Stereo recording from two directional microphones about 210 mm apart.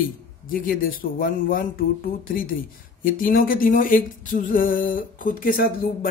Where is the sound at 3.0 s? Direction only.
40° left (ahead or behind).